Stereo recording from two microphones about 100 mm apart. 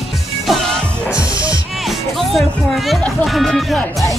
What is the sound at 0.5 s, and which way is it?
Music, centre (ahead or behind).